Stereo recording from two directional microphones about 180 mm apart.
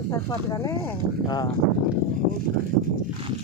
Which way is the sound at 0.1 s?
20° left (ahead or behind).